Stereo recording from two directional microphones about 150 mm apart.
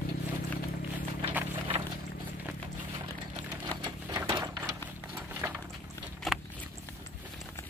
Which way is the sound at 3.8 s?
25° right (ahead or behind).